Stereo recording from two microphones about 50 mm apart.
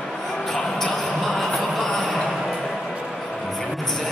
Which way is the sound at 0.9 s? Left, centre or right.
Centre.